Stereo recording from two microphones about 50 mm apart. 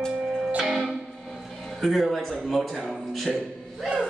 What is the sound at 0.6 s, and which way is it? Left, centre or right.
Music, centre.